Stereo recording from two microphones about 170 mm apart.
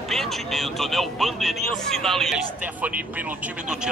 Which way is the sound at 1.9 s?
Centre (ahead or behind).